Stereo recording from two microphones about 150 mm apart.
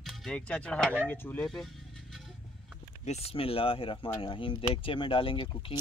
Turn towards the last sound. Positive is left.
turn(degrees=35)  # may be behind; listen again after turning